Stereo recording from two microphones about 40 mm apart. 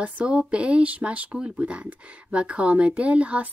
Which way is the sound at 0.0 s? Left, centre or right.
Right.